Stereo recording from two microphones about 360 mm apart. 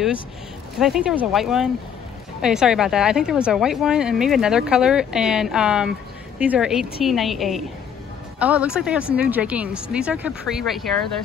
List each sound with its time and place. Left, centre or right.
0.7 s speech: centre